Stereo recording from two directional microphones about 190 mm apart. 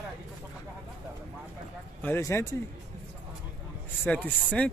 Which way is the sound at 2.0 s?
10° left (ahead or behind).